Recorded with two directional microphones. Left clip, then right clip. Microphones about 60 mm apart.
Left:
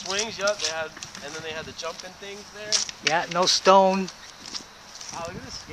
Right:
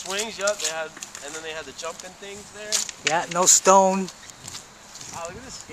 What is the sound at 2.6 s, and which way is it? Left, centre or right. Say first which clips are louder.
Speech: even; centre.